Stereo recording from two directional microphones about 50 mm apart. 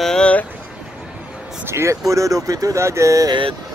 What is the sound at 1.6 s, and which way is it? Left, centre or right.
Speech, right.